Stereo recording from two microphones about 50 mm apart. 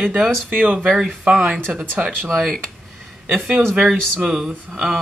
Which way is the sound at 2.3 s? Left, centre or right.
Centre.